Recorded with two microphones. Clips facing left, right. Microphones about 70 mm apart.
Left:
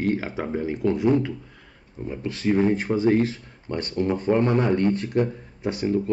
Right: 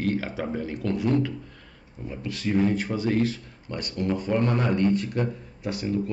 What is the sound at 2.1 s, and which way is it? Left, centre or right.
Speech, left.